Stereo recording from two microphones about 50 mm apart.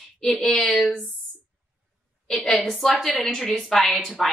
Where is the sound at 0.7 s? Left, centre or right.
Centre.